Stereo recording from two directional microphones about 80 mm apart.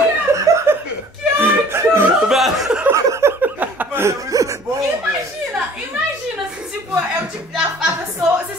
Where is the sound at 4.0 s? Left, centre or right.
Right.